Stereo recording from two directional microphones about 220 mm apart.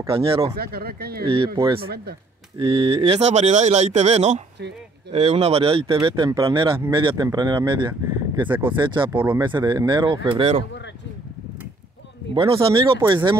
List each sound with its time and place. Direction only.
0.0 s speech: 25° right (ahead or behind)
0.6 s speech: 45° right (ahead or behind)
1.2 s speech: 25° right (ahead or behind)
9.1 s speech: 10° right (ahead or behind)
9.4 s speech: 20° right (ahead or behind)
12.4 s speech: 25° right (ahead or behind)